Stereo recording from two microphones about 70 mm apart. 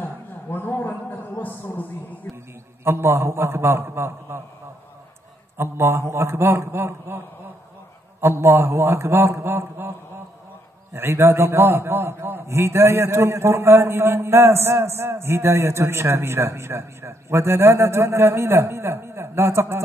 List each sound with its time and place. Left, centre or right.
0.0 s a sound: left
2.3 s a man's voice: left
2.8 s a man's voice: right
5.6 s a man's voice: right